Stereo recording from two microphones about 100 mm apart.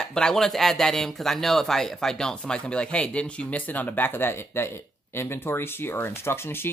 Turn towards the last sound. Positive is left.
turn(degrees=25)  # may be behind; listen again after turning